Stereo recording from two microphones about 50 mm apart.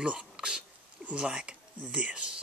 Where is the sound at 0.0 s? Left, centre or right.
Centre.